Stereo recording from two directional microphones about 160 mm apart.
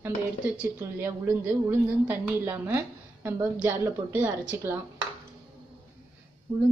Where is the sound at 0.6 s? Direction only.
10° right (ahead or behind).